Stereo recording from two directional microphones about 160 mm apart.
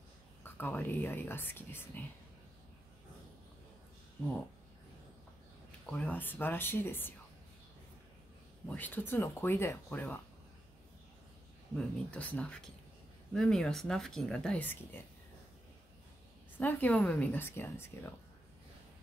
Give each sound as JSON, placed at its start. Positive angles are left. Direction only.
{"t": 0.4, "sound": "speech", "side_deg": 10}
{"t": 5.9, "sound": "speech", "side_deg": 10}
{"t": 8.6, "sound": "speech", "side_deg": 10}
{"t": 11.7, "sound": "speech", "side_deg": 10}
{"t": 16.5, "sound": "speech", "side_deg": 10}